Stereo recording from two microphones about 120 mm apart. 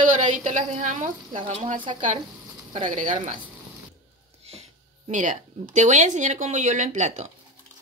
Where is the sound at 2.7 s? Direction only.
90° right.